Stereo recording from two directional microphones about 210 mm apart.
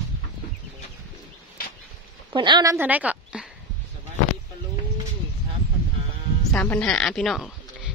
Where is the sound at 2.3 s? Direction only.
20° right (ahead or behind).